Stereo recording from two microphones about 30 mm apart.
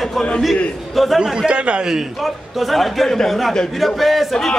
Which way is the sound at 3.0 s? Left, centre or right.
Centre.